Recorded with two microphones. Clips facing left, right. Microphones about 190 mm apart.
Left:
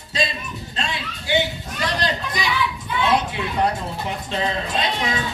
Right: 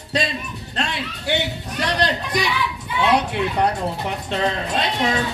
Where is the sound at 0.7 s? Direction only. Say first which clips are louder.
Right 3 dB; 65° right (ahead or behind).